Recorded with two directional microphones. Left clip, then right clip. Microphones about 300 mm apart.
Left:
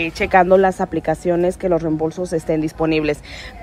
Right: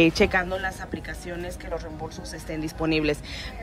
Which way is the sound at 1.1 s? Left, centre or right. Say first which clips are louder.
Left 17 dB; centre.